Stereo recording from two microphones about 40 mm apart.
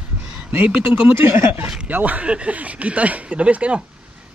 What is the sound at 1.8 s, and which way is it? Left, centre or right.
Speech, right.